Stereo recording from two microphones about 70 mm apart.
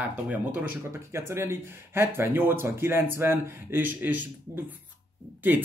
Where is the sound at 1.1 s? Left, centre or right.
Right.